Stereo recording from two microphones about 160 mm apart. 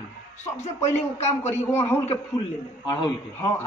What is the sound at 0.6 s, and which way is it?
Speech, 45° left (ahead or behind).